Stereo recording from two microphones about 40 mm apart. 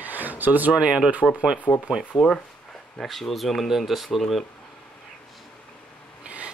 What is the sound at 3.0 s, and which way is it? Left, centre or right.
Speech, centre.